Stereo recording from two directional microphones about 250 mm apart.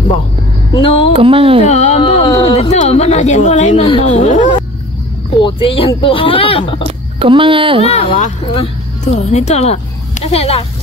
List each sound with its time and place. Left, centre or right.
0.7 s speech: left
1.1 s speech: right
1.7 s speech: left
7.2 s speech: centre
7.8 s speech: left